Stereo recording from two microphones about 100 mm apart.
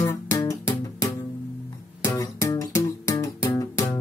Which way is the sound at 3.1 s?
45° left (ahead or behind).